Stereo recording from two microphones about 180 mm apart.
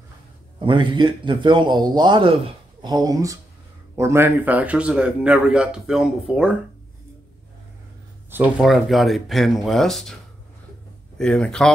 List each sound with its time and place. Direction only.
0.6 s a man's voice: 25° right (ahead or behind); by 6.5 s 5° right (ahead or behind)
8.3 s speech: 5° right (ahead or behind)
11.1 s speech: 5° left (ahead or behind)